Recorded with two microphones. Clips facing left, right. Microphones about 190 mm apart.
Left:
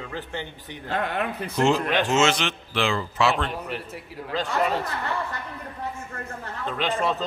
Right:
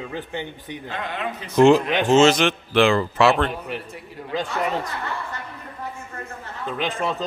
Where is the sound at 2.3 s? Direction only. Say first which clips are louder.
Right 8 dB; 55° right (ahead or behind).